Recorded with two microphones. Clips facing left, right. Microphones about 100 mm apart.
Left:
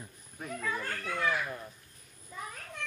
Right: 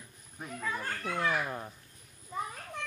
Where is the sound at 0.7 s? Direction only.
30° right (ahead or behind).